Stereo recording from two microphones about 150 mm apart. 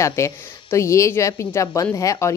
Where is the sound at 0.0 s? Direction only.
20° left (ahead or behind).